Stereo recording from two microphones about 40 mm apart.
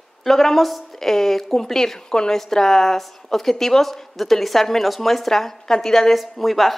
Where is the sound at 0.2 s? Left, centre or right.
Centre.